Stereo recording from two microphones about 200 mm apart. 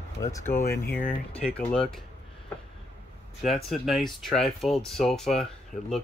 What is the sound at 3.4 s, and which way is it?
Speech, centre (ahead or behind).